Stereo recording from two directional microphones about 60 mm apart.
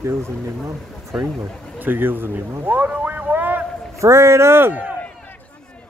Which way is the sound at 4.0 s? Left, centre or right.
Right.